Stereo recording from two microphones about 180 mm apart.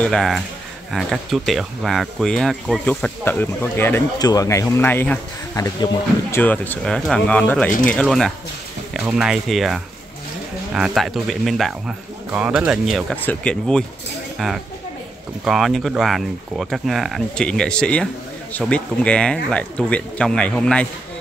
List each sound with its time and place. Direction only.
0.0 s speech: centre (ahead or behind)
13.1 s speech: 10° left (ahead or behind)